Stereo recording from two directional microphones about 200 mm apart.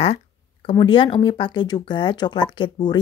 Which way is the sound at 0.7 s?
25° left (ahead or behind).